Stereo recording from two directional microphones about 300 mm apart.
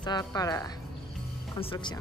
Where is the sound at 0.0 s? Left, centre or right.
Centre.